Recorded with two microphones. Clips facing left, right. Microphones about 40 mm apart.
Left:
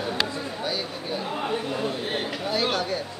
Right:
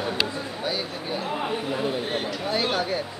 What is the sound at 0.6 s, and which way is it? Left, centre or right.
Speech, centre.